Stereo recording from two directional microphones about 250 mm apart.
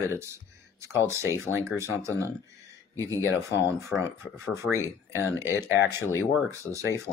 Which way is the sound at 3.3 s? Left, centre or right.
Centre.